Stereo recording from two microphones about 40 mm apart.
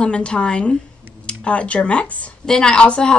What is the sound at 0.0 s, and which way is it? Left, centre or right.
Speech, left.